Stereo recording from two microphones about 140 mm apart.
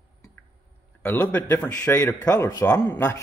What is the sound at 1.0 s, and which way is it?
A man's voice, 15° left (ahead or behind).